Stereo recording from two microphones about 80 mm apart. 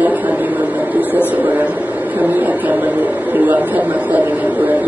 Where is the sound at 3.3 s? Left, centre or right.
Right.